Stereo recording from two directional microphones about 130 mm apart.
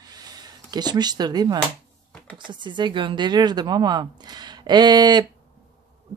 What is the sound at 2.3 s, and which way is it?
Speech, 35° right (ahead or behind).